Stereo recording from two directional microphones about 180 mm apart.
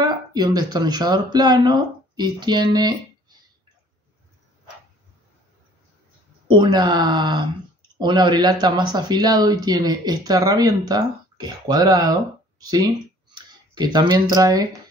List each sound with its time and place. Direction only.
0.0 s speech: 20° right (ahead or behind)
6.5 s speech: 25° right (ahead or behind)